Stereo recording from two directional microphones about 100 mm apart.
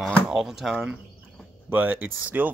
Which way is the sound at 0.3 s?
5° right (ahead or behind).